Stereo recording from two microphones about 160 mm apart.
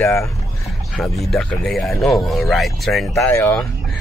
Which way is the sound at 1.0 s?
Centre (ahead or behind).